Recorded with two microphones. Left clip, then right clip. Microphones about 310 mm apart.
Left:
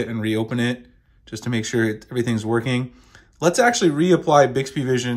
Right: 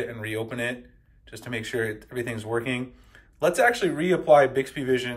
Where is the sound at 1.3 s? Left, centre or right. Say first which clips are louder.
Left 6 dB; centre.